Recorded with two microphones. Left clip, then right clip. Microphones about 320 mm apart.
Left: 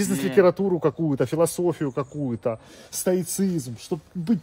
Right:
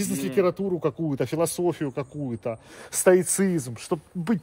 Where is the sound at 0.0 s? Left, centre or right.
Centre.